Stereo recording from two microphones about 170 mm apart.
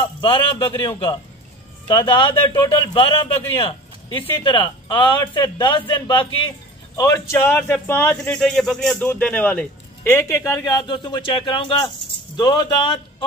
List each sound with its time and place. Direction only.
0.0 s a man's voice: 30° left (ahead or behind)